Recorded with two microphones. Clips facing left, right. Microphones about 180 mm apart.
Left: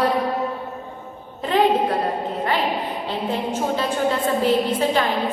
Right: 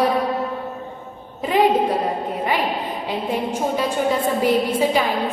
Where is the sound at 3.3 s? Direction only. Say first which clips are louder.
Right 1 dB; 10° right (ahead or behind).